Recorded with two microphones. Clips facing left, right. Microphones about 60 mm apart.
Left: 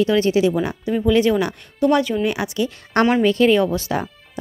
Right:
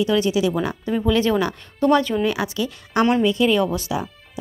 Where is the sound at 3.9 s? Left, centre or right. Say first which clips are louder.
Left 2 dB; left.